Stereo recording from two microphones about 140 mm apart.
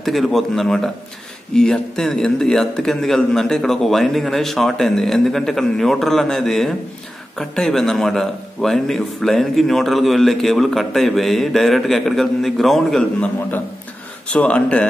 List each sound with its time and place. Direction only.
0.0 s a man's voice: centre (ahead or behind)
14.3 s speech: 10° left (ahead or behind)